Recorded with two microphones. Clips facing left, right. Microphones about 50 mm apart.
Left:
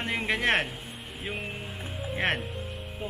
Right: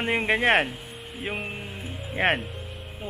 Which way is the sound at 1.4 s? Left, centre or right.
Centre.